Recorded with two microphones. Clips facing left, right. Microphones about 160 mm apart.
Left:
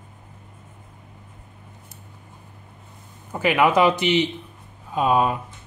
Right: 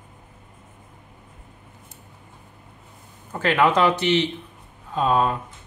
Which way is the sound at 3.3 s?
10° left (ahead or behind).